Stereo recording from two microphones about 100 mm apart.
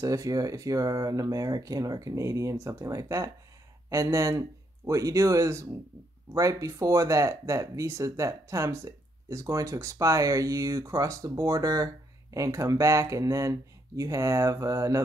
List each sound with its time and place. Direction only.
0.0 s speech: 35° right (ahead or behind)